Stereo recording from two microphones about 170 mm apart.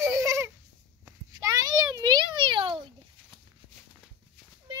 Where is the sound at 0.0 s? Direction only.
15° right (ahead or behind).